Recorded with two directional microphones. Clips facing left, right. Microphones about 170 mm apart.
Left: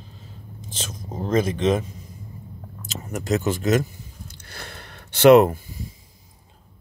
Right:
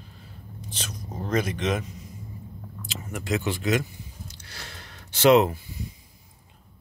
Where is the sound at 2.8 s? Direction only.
45° left (ahead or behind).